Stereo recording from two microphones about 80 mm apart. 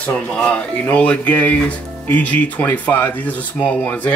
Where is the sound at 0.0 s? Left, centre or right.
Centre.